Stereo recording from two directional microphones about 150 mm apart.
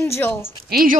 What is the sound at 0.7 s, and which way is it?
Speech, 90° right.